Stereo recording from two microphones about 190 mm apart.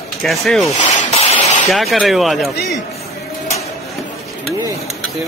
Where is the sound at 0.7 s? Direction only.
35° left (ahead or behind).